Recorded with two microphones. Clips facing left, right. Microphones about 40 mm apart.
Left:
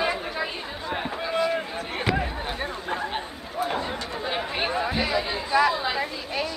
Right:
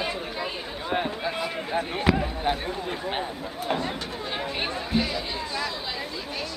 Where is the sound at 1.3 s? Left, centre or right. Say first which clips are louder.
Left 3 dB; centre.